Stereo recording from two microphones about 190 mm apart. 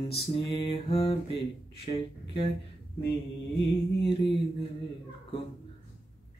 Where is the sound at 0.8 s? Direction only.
30° left (ahead or behind).